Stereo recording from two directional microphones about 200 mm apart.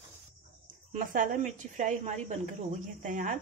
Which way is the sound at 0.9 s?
40° right (ahead or behind).